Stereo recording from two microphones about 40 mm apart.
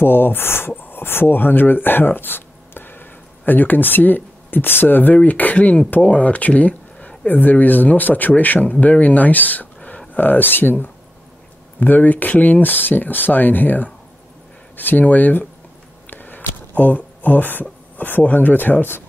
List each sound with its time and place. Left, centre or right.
0.0 s speech: left
7.2 s speech: left
16.1 s a sound: left